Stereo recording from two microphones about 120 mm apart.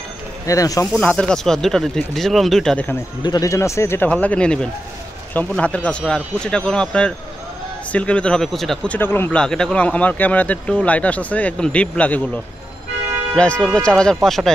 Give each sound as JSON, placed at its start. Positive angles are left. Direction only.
{"t": 0.5, "sound": "speech", "side_deg": 30}
{"t": 0.9, "sound": "speech", "side_deg": 10}
{"t": 3.2, "sound": "speech", "side_deg": 35}
{"t": 4.1, "sound": "speech", "side_deg": 10}
{"t": 8.9, "sound": "speech", "side_deg": 20}
{"t": 9.4, "sound": "speech", "side_deg": 5}
{"t": 13.3, "sound": "speech", "side_deg": 5}